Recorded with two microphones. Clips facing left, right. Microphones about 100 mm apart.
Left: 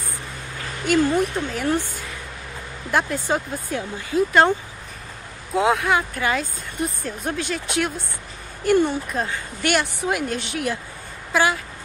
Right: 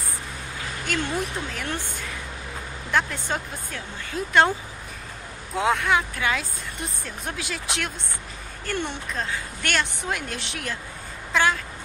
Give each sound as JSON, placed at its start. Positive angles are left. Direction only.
{"t": 0.8, "sound": "speech", "side_deg": 5}
{"t": 2.9, "sound": "speech", "side_deg": 10}
{"t": 4.1, "sound": "speech", "side_deg": 0}
{"t": 8.7, "sound": "speech", "side_deg": 15}